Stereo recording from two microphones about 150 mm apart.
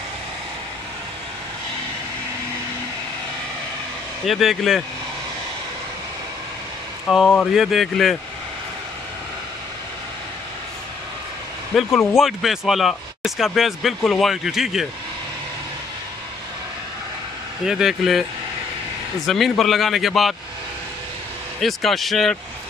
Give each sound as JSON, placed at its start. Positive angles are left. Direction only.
{"t": 4.3, "sound": "speech", "side_deg": 0}
{"t": 7.1, "sound": "speech", "side_deg": 0}
{"t": 11.9, "sound": "speech", "side_deg": 15}
{"t": 12.2, "sound": "speech", "side_deg": 0}
{"t": 17.6, "sound": "speech", "side_deg": -5}
{"t": 19.2, "sound": "speech", "side_deg": 0}
{"t": 21.5, "sound": "speech", "side_deg": 0}